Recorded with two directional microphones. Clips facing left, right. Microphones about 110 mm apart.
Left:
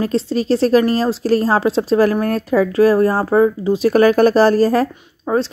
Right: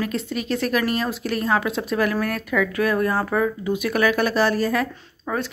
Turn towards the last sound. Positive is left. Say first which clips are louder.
# left 8 dB
turn(degrees=30)  # may be behind; listen again after turning